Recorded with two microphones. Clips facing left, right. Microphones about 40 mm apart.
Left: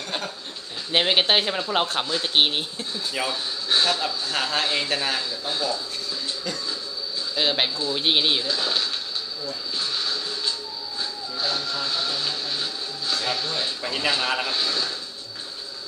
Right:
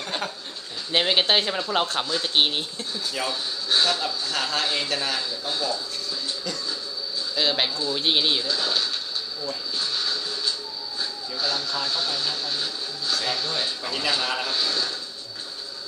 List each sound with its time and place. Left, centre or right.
0.9 s speech: centre
4.3 s a man's voice: left
7.3 s speech: centre
9.8 s a sound: centre
11.7 s speech: centre